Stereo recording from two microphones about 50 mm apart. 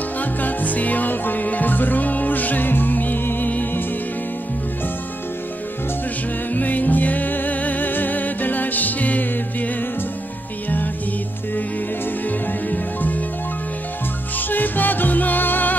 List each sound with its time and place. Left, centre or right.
0.2 s music: left
6.5 s music: left
14.5 s music: left